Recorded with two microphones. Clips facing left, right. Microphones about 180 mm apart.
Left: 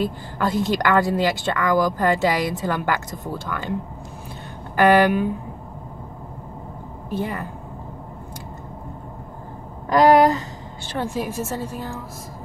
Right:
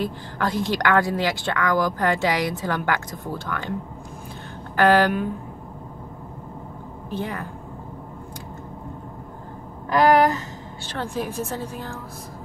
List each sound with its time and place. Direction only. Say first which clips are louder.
0.4 s speech: left 2 dB; centre (ahead or behind)
4.7 s speech: left 2 dB; 10° left (ahead or behind)
7.1 s speech: left 3 dB; 5° left (ahead or behind)
9.9 s speech: left 3 dB; 20° left (ahead or behind)